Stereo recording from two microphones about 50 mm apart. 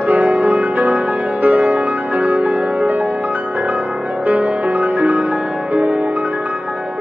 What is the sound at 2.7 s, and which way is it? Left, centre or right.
Music, right.